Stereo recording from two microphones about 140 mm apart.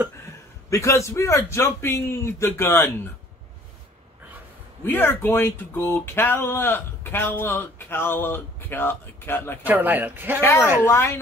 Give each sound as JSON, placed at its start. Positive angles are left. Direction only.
{"t": 0.7, "sound": "a man's voice", "side_deg": 20}
{"t": 4.8, "sound": "speech", "side_deg": 15}
{"t": 9.7, "sound": "speech", "side_deg": -10}
{"t": 10.4, "sound": "a man's voice", "side_deg": 15}